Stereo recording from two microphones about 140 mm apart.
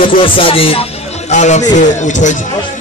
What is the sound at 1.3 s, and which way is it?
Speech, 55° left (ahead or behind).